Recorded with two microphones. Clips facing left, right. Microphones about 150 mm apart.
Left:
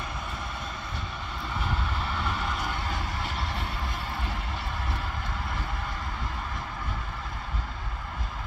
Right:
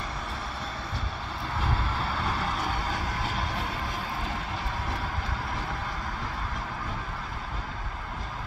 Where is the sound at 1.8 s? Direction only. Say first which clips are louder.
Right 1 dB; 35° right (ahead or behind).